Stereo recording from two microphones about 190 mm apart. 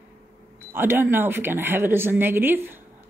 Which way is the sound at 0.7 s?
10° right (ahead or behind).